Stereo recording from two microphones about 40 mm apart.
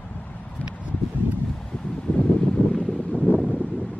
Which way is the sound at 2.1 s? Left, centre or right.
Left.